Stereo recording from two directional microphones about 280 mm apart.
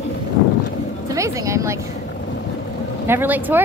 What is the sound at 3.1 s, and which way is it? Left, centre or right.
Speech, centre.